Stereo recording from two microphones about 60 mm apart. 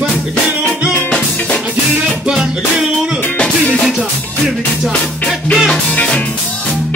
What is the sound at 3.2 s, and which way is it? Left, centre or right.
Music, left.